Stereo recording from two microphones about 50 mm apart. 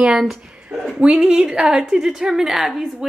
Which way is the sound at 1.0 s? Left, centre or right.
Centre.